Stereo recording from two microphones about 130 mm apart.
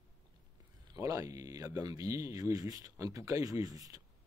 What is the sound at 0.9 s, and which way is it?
Speech, 25° right (ahead or behind).